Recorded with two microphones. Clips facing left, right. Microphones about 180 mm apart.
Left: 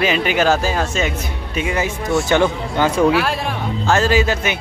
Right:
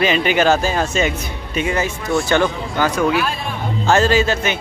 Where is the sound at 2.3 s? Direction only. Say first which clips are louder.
Left 1 dB; 25° left (ahead or behind).